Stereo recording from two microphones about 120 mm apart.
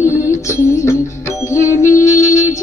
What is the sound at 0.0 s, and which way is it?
Music, 25° left (ahead or behind).